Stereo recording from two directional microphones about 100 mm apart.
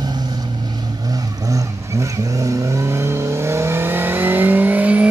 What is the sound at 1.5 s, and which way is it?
Vehicle, 35° right (ahead or behind).